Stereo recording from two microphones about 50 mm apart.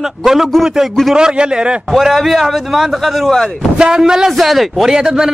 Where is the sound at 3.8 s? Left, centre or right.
Centre.